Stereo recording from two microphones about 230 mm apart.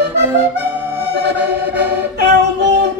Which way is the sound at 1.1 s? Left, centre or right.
Right.